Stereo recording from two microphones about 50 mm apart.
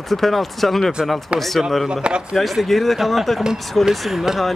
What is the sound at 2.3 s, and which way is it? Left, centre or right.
Speech, centre.